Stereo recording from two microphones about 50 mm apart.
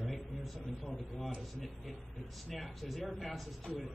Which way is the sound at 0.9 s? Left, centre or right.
Centre.